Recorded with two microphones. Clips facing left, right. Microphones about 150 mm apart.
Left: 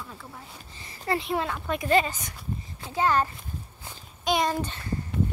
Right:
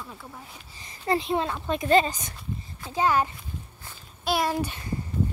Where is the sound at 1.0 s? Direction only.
25° right (ahead or behind).